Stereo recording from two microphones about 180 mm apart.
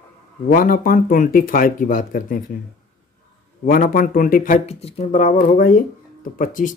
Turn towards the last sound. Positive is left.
turn(degrees=45)  # may be behind; listen again after turning